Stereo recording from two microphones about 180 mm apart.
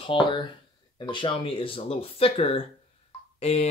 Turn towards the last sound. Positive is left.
turn(degrees=35)  # may be behind; listen again after turning